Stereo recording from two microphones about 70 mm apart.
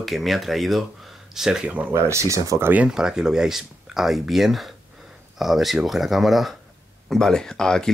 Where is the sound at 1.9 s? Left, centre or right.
Right.